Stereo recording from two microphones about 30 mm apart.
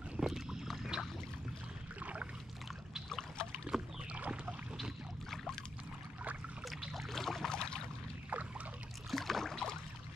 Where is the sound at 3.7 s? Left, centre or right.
Centre.